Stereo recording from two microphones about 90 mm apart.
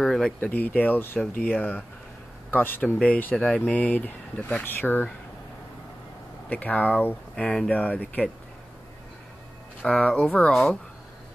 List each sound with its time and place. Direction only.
0.0 s speech: 5° left (ahead or behind)
0.4 s speech: 15° left (ahead or behind)
6.5 s speech: 15° left (ahead or behind)
9.8 s speech: 15° left (ahead or behind)
10.5 s speech: 5° left (ahead or behind)